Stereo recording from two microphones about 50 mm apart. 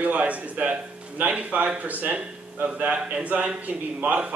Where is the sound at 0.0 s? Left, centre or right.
Right.